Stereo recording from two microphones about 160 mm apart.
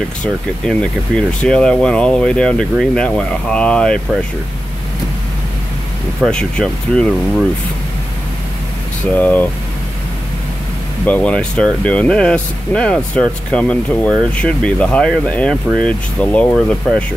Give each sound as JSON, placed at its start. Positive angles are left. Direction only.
{"t": 0.7, "sound": "speech", "side_deg": 5}
{"t": 6.2, "sound": "speech", "side_deg": 5}
{"t": 9.0, "sound": "speech", "side_deg": 10}
{"t": 11.1, "sound": "speech", "side_deg": 10}